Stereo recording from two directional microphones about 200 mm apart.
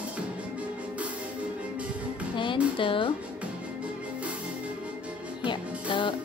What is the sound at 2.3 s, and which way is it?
Speech, 25° left (ahead or behind).